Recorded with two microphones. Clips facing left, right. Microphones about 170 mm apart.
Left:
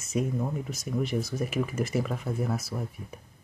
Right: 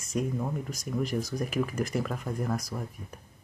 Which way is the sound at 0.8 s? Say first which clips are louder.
Left 1 dB; 40° right (ahead or behind).